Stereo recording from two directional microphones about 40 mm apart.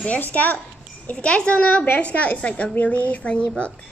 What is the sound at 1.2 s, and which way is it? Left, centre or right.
Speech, left.